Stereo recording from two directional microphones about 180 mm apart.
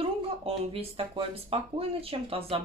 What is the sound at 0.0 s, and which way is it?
Speech, 30° right (ahead or behind).